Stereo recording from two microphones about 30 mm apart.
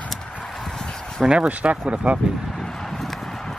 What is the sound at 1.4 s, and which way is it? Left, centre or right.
Speech, right.